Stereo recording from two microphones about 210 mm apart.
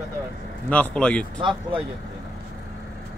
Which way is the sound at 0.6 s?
5° left (ahead or behind).